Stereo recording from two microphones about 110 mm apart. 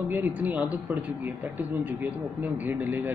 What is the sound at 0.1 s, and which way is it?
Speech, 15° right (ahead or behind).